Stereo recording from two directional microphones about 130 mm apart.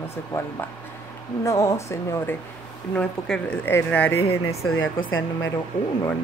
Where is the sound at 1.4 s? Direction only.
25° left (ahead or behind).